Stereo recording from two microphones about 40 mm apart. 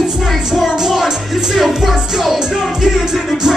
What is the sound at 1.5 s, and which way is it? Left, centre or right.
Music, centre.